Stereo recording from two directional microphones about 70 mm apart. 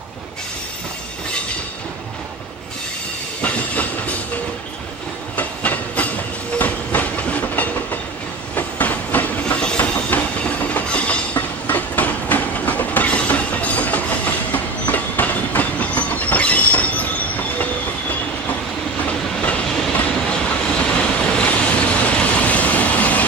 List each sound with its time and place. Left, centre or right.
3.4 s train: left
5.3 s train: left
19.8 s train: centre